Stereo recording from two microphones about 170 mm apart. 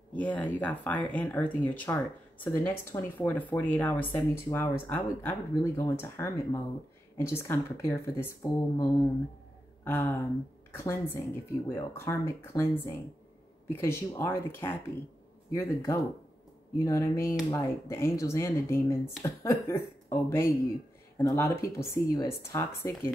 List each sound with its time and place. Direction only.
0.1 s speech: 10° left (ahead or behind)
9.8 s speech: 10° left (ahead or behind)